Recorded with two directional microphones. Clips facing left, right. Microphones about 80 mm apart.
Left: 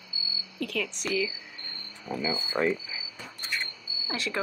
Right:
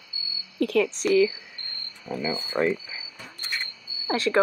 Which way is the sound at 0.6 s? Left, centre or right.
Right.